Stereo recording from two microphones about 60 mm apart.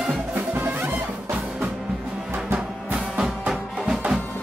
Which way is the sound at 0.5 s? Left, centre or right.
Right.